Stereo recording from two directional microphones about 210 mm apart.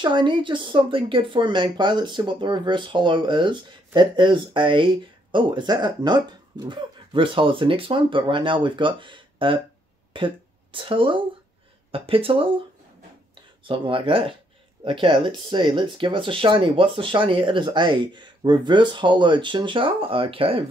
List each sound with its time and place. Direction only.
0.0 s speech: 20° right (ahead or behind)